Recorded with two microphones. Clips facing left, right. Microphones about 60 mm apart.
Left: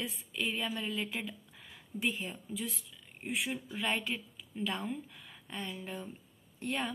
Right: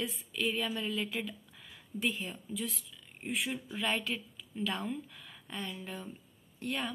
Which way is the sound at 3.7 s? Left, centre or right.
Left.